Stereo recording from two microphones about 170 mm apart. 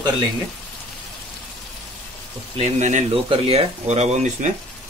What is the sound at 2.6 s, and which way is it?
Speech, 45° right (ahead or behind).